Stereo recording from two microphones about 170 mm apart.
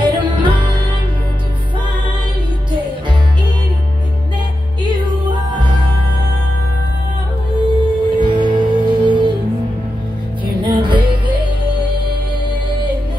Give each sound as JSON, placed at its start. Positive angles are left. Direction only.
{"t": 0.0, "sound": "music", "side_deg": -30}
{"t": 5.6, "sound": "music", "side_deg": -30}
{"t": 7.6, "sound": "music", "side_deg": -25}
{"t": 10.4, "sound": "music", "side_deg": -30}